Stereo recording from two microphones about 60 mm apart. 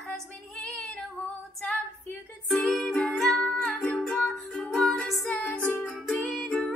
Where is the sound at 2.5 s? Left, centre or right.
Centre.